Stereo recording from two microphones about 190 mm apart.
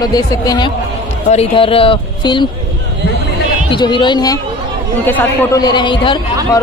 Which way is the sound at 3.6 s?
25° left (ahead or behind).